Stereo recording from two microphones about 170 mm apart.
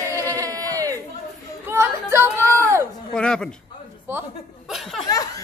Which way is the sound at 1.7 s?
15° right (ahead or behind).